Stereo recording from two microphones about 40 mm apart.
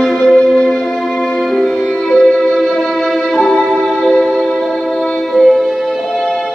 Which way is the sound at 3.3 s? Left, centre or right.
Centre.